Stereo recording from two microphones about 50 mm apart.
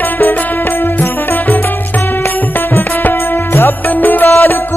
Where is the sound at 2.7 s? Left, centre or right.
Left.